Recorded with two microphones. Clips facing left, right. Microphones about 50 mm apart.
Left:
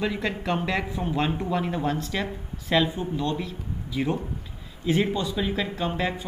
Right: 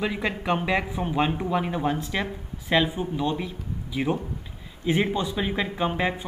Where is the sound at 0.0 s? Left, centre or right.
Centre.